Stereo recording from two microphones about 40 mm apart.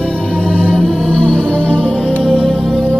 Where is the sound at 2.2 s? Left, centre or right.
Centre.